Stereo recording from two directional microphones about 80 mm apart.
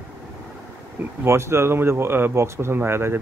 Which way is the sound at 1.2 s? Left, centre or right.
Right.